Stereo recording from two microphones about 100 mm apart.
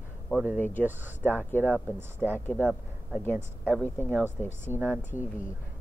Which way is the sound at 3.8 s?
20° left (ahead or behind).